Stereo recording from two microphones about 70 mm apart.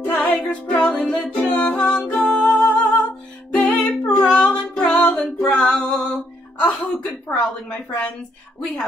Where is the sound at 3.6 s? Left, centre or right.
Centre.